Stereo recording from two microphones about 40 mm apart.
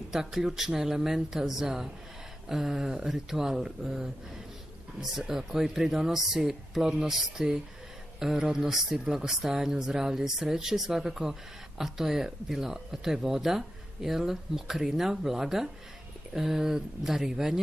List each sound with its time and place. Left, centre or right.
0.1 s speech: centre
5.4 s speech: centre